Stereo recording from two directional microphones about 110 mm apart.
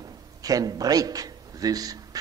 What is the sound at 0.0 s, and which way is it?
A man's voice, 35° right (ahead or behind).